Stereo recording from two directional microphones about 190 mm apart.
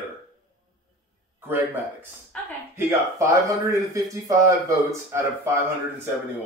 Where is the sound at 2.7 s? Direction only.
15° right (ahead or behind).